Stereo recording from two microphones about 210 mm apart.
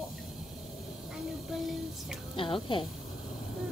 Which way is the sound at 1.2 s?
Centre (ahead or behind).